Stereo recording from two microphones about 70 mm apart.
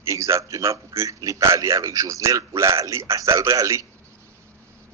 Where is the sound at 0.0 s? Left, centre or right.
Right.